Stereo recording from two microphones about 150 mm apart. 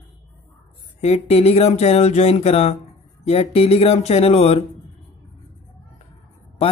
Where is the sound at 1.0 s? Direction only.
45° left (ahead or behind).